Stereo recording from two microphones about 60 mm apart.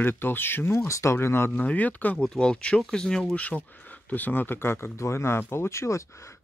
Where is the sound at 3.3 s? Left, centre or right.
Left.